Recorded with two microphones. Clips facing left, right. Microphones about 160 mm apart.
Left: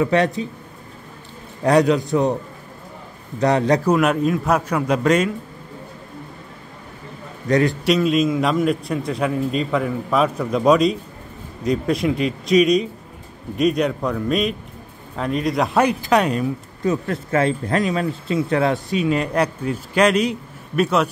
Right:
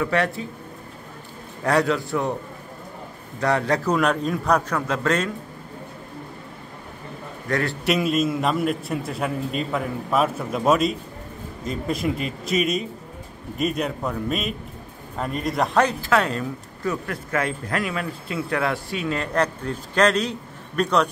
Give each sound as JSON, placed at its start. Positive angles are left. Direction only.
{"t": 0.0, "sound": "a man's voice", "side_deg": 20}
{"t": 1.6, "sound": "a man's voice", "side_deg": 20}
{"t": 3.3, "sound": "a man's voice", "side_deg": 20}
{"t": 3.9, "sound": "speech", "side_deg": 5}
{"t": 7.4, "sound": "a man's voice", "side_deg": 20}
{"t": 7.8, "sound": "a man's voice", "side_deg": -5}
{"t": 15.8, "sound": "speech", "side_deg": 15}